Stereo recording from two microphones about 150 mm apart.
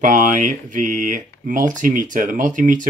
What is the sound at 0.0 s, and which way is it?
Speech, 60° right (ahead or behind).